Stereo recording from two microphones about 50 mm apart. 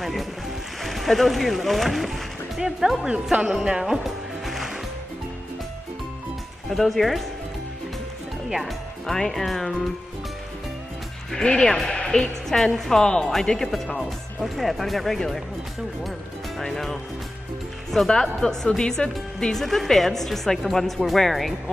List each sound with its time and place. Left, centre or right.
0.0 s speech: centre
3.1 s speech: centre
4.0 s music: centre
6.7 s speech: centre
8.5 s speech: centre
11.3 s a woman's voice: centre
16.5 s speech: centre